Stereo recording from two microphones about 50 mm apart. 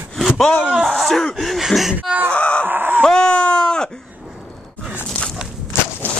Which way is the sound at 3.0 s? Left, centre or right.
Centre.